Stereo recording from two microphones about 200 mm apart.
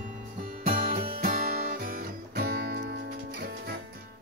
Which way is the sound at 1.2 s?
50° right (ahead or behind).